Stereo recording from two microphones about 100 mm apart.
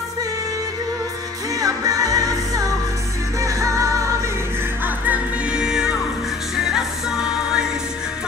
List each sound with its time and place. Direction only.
1.6 s music: 35° right (ahead or behind)
4.8 s music: 15° right (ahead or behind)